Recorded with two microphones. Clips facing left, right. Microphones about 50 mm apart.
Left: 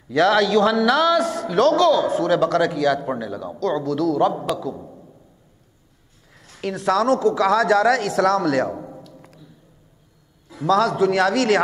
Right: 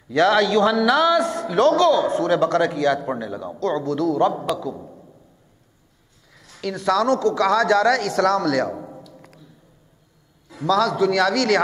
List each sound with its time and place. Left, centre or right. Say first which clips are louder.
0.1 s a man's voice: even; centre
6.3 s a sound: left 1 dB; left
6.8 s a man's voice: even; left
7.1 s speech: left 1 dB; centre
8.5 s a man's voice: left 1 dB; left
8.7 s a sound: even; centre
10.6 s a man's voice: left 1 dB; left; by 11.6 s centre